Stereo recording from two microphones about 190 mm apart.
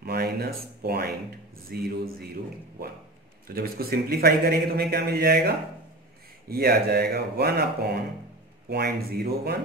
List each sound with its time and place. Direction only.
0.0 s speech: 55° right (ahead or behind)
3.5 s a man's voice: 55° right (ahead or behind)
6.5 s a man's voice: 55° right (ahead or behind)